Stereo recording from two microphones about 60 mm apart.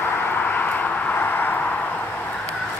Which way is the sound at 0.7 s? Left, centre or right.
Left.